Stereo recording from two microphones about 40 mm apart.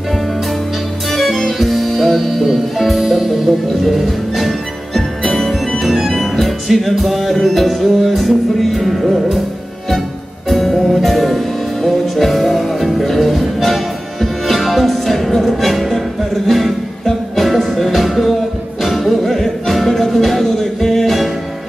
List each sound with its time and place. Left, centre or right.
1.1 s music: centre
10.5 s music: centre